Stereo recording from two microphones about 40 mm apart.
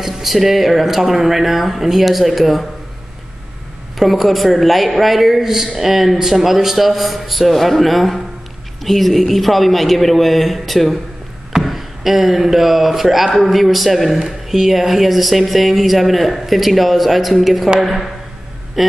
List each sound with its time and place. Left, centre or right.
0.0 s a man's voice: centre
4.0 s a man's voice: centre